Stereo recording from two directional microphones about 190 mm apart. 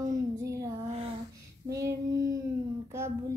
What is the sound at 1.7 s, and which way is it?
Female singing, 15° right (ahead or behind).